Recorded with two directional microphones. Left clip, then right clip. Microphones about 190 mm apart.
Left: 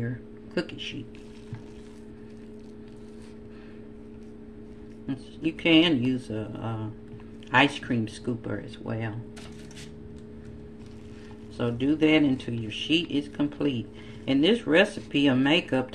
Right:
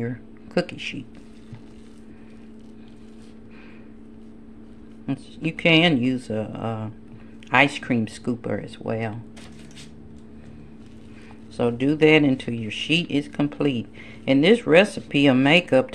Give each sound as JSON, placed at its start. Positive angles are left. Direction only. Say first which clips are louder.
{"t": 0.6, "sound": "speech", "louder": "right 6 dB", "side_deg": -60}
{"t": 5.0, "sound": "speech", "louder": "right 2 dB", "side_deg": -60}
{"t": 11.5, "sound": "speech", "louder": "right 5 dB", "side_deg": -60}